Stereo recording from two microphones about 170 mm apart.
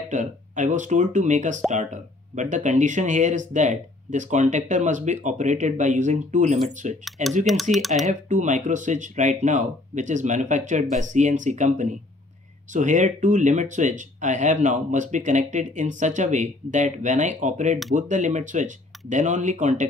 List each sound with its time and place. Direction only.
0.1 s speech: 45° right (ahead or behind)
7.7 s speech: centre (ahead or behind)
8.0 s speech: 45° right (ahead or behind)